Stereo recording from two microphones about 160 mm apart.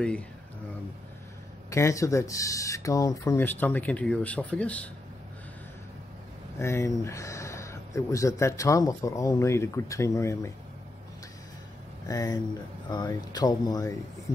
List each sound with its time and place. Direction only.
1.7 s speech: 20° left (ahead or behind)
6.6 s speech: 20° left (ahead or behind)
12.1 s speech: 20° left (ahead or behind)